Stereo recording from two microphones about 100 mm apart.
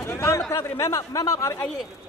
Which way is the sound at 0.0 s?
25° left (ahead or behind).